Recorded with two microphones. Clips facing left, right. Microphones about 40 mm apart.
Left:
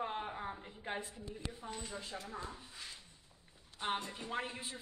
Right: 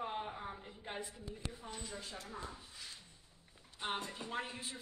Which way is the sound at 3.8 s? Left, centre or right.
Centre.